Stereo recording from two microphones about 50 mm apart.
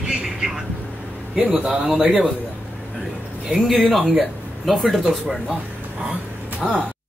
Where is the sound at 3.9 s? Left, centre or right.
Centre.